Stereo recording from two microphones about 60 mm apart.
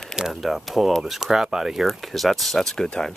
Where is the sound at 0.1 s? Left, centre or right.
Centre.